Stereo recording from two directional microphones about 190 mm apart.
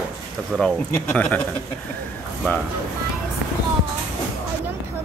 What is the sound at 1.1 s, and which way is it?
Speech, 5° left (ahead or behind).